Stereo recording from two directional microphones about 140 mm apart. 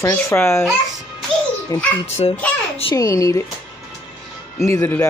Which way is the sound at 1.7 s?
25° left (ahead or behind).